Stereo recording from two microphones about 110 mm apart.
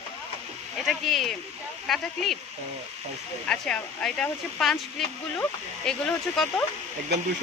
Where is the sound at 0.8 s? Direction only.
Centre (ahead or behind).